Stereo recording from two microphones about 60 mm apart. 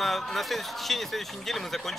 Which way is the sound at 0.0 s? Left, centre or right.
Centre.